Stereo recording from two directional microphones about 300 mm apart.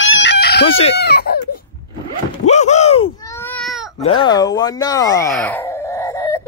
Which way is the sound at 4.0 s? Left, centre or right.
Centre.